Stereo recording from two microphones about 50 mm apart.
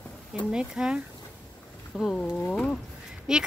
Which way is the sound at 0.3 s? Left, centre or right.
Centre.